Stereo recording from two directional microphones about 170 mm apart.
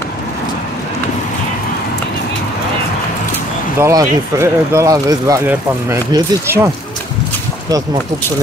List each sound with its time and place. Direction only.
3.8 s speech: 15° right (ahead or behind)